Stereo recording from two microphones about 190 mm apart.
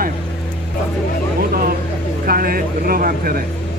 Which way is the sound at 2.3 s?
50° right (ahead or behind).